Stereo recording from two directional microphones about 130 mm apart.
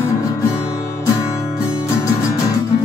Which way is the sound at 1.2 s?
20° left (ahead or behind).